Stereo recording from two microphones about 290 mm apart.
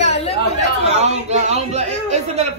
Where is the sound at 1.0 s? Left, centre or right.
Right.